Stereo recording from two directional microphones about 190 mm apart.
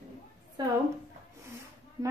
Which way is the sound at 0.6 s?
20° right (ahead or behind).